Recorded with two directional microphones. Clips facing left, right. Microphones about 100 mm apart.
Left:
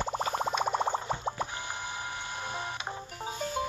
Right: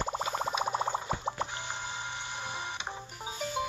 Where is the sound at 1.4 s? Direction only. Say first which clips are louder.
Left 1 dB; 25° right (ahead or behind).